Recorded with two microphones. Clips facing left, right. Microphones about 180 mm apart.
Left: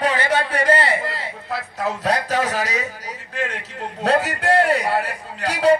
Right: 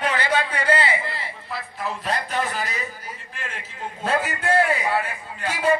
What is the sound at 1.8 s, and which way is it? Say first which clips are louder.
A man's voice: left 5 dB; 90° left.